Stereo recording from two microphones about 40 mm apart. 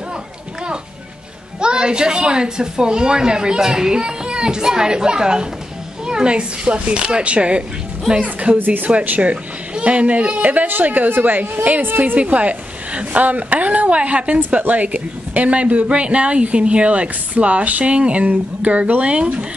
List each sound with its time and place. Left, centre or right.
1.6 s a woman's voice: right
8.5 s a woman's voice: right
9.2 s a woman's voice: right
12.2 s speech: right